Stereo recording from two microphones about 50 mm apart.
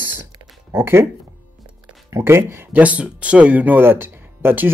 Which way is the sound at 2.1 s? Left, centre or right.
Right.